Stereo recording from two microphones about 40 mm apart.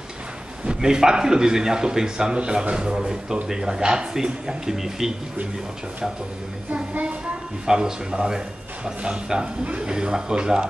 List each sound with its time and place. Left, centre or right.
0.7 s a man's voice: centre
6.7 s speech: right
7.6 s a man's voice: centre